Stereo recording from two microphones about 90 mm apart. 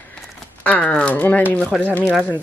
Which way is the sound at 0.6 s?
10° left (ahead or behind).